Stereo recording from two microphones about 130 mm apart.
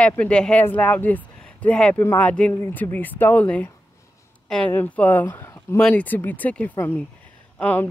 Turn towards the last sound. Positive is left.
turn(degrees=10)  # may be behind; listen again after turning